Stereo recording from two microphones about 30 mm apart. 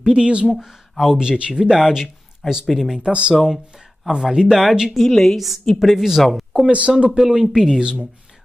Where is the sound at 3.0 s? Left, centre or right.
Right.